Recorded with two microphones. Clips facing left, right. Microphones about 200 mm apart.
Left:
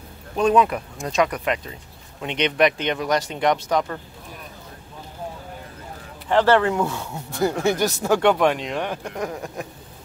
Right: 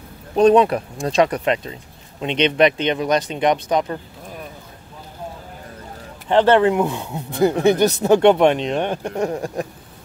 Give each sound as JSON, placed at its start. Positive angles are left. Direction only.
{"t": 0.4, "sound": "speech", "side_deg": -35}
{"t": 6.2, "sound": "speech", "side_deg": -20}